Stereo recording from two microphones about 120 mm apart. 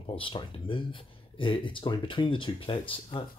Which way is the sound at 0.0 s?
45° left (ahead or behind).